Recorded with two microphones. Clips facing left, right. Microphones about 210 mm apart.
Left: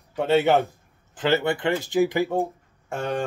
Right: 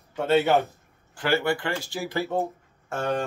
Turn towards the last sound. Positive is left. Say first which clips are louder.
# even
turn(degrees=15)  # may be behind; listen again after turning